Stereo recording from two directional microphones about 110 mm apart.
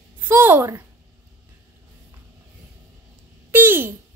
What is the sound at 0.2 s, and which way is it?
Speech, 20° right (ahead or behind).